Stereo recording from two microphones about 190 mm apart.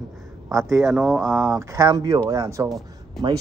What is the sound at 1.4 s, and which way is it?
A man's voice, 15° right (ahead or behind).